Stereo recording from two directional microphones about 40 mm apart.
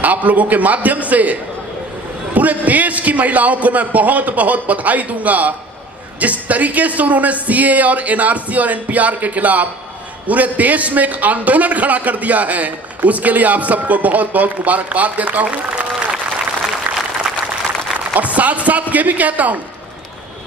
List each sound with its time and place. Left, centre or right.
0.0 s a man's voice: right
18.1 s a man's voice: right